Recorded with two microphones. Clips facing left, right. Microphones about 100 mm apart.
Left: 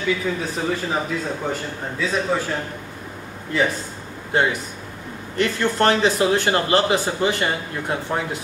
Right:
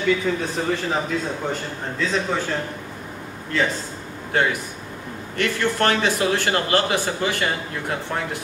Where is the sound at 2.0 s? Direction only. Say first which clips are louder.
Left 1 dB; 5° left (ahead or behind).